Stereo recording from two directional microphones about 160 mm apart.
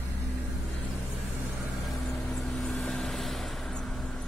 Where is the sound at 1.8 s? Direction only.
Centre (ahead or behind).